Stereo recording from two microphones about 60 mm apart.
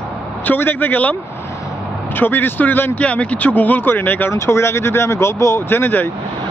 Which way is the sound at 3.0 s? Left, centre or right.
Left.